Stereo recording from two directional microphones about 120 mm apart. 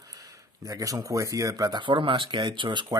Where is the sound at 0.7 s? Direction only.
30° right (ahead or behind).